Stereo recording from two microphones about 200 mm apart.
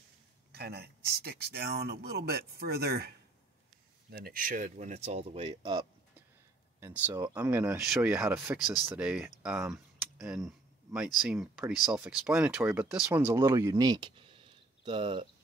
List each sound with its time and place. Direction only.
0.5 s speech: 50° right (ahead or behind); by 5.9 s 20° right (ahead or behind)
6.8 s speech: 10° right (ahead or behind)
10.1 s a sound: 5° right (ahead or behind)
11.1 s speech: centre (ahead or behind); by 15.2 s 25° right (ahead or behind)